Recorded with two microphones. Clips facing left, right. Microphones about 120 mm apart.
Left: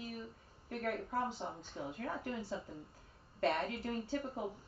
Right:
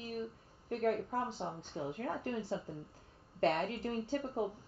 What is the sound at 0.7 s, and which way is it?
Speech, 35° right (ahead or behind).